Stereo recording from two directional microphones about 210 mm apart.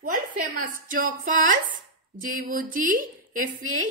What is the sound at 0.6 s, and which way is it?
Speech, 40° right (ahead or behind).